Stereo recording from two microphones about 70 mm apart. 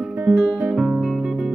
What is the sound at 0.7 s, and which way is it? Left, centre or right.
Music, centre.